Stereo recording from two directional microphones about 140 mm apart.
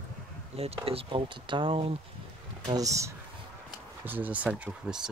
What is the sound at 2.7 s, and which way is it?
Speech, 25° right (ahead or behind).